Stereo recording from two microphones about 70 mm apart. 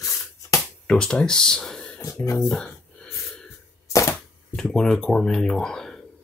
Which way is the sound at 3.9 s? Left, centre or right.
Left.